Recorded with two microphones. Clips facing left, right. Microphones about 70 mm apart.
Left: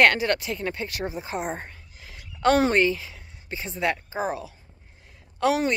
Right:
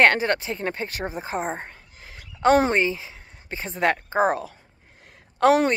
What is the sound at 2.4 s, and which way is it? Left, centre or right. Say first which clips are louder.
Speech: right 1 dB; right.